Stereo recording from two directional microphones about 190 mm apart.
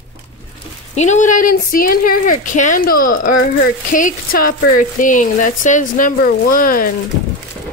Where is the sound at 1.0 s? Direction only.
40° left (ahead or behind).